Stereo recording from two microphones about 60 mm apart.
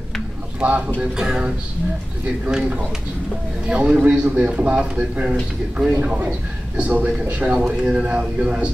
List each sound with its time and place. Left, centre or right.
0.6 s speech: right
1.1 s speech: centre
3.6 s speech: centre
7.8 s speech: centre